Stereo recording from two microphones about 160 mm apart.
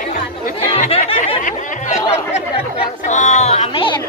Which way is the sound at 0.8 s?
35° left (ahead or behind).